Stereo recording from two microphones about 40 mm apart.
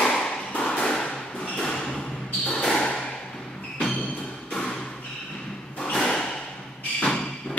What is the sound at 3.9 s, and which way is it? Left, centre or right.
Music, left.